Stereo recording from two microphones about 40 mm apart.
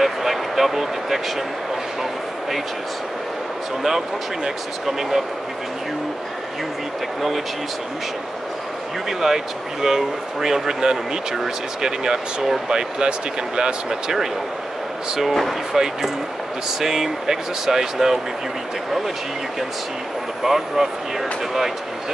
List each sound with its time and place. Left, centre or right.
0.0 s a sound: centre
7.2 s speech: centre
9.2 s speech: centre
15.7 s speech: centre
20.4 s speech: centre